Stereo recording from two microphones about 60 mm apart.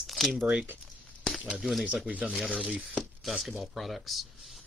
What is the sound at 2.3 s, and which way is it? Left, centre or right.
Speech, centre.